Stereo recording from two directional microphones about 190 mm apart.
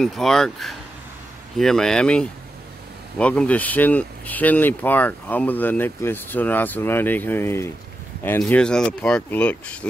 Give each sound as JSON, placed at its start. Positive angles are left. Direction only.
{"t": 0.0, "sound": "speech", "side_deg": 0}